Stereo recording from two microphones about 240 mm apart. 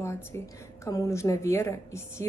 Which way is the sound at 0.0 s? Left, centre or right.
Centre.